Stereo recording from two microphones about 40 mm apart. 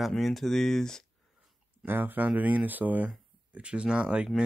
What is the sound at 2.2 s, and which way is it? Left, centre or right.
Speech, right.